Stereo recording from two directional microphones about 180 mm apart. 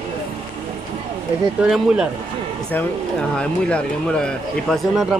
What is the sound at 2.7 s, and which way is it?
Speech, 10° left (ahead or behind).